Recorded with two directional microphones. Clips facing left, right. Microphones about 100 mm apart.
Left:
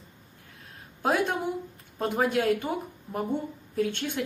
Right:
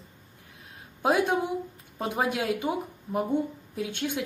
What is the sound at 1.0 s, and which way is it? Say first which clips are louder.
Speech: right 2 dB; 15° right (ahead or behind).